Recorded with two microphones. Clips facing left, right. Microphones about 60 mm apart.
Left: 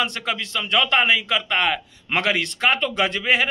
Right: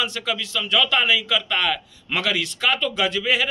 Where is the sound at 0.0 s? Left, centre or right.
Left.